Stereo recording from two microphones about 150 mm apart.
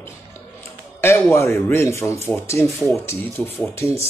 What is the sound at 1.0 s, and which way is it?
Speech, 15° left (ahead or behind).